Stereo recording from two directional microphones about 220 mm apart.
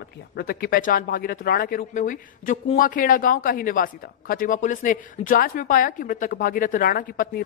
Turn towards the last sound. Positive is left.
turn(degrees=40)  # may be behind; listen again after turning